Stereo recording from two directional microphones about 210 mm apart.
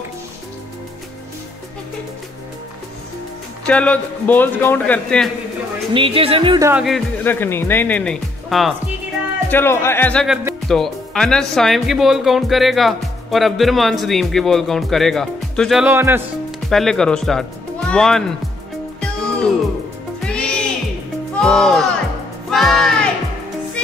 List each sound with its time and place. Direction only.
3.6 s a man's voice: 5° left (ahead or behind)
5.9 s speech: 25° right (ahead or behind)
6.7 s speech: centre (ahead or behind)
7.2 s a man's voice: 10° left (ahead or behind)
9.5 s speech: 10° left (ahead or behind)
15.9 s speech: 10° right (ahead or behind)
16.6 s speech: centre (ahead or behind)
20.2 s music: 5° left (ahead or behind)
21.4 s speech: centre (ahead or behind)
22.5 s music: centre (ahead or behind)